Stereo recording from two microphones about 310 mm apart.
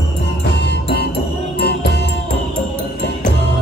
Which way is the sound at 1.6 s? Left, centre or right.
Left.